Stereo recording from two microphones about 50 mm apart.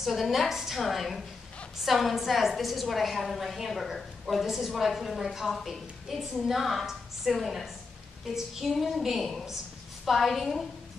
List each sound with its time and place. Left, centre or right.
0.0 s a woman's voice: centre